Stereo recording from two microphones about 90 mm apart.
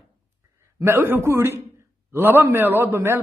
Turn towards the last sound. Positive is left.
turn(degrees=-30)  # may be behind; listen again after turning